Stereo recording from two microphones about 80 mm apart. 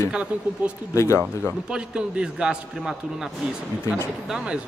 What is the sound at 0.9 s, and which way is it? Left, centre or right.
Speech, left.